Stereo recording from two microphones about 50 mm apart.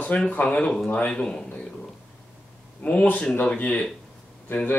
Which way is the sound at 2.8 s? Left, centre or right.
Left.